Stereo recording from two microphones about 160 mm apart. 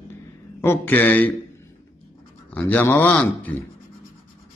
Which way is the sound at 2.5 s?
10° left (ahead or behind).